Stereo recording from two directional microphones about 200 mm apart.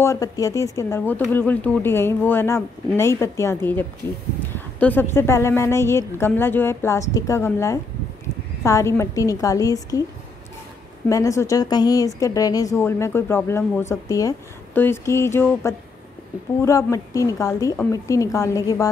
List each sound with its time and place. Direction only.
0.0 s speech: 15° left (ahead or behind)
11.1 s speech: 15° left (ahead or behind)